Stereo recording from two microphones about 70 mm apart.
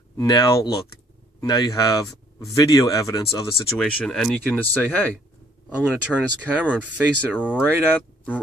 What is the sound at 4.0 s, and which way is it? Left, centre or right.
Speech, centre.